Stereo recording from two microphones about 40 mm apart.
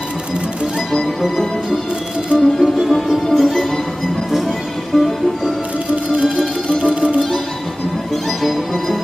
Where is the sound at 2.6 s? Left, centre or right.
Centre.